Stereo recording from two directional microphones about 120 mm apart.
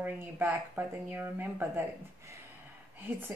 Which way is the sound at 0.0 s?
15° right (ahead or behind).